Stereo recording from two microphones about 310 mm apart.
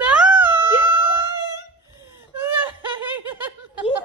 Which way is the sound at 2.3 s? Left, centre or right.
Centre.